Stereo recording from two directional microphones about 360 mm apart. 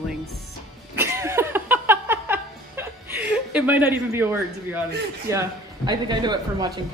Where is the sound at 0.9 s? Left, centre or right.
Centre.